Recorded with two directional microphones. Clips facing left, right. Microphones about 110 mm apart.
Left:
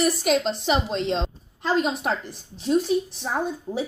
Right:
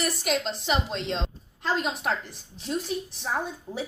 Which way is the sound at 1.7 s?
5° left (ahead or behind).